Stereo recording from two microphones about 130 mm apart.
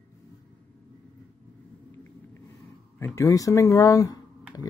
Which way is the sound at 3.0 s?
20° left (ahead or behind).